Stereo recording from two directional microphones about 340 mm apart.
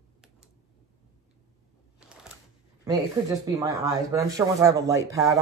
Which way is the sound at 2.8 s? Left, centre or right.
Centre.